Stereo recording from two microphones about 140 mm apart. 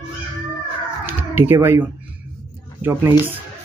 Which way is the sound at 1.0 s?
15° right (ahead or behind).